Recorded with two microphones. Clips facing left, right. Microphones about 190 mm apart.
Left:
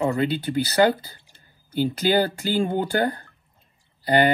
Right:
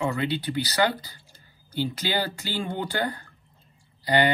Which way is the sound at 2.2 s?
55° left (ahead or behind).